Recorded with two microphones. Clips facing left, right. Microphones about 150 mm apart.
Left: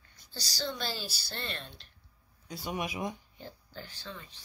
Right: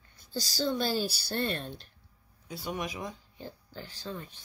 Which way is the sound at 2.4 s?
Centre (ahead or behind).